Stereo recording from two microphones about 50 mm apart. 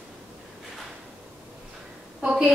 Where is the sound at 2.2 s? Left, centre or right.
Right.